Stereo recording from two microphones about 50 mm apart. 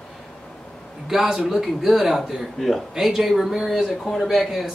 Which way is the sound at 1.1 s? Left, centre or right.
Centre.